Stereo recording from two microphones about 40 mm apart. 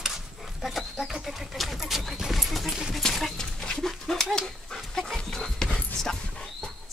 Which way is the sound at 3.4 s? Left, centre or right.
Centre.